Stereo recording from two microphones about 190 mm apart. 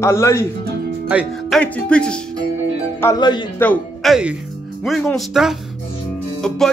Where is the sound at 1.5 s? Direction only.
5° left (ahead or behind).